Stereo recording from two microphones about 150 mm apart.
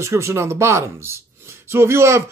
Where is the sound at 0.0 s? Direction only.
20° right (ahead or behind).